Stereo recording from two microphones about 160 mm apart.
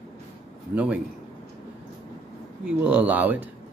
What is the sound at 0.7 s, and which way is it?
Speech, 10° right (ahead or behind).